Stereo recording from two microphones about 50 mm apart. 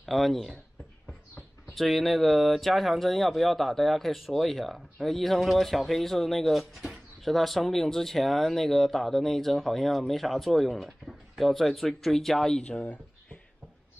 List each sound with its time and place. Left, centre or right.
0.0 s speech: centre
1.7 s speech: centre
12.6 s speech: left